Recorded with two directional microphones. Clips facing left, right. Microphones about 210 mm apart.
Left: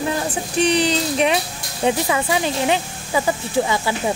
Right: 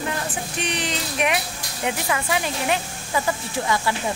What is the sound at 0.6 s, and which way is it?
Speech, 35° left (ahead or behind).